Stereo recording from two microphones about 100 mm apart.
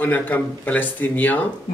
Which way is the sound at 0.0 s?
15° left (ahead or behind).